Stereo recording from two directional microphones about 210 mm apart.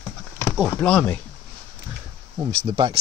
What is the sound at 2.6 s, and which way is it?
Speech, 25° right (ahead or behind).